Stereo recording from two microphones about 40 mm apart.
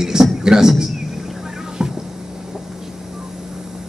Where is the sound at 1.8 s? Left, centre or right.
Centre.